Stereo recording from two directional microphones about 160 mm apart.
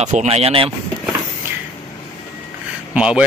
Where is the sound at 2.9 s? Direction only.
5° right (ahead or behind).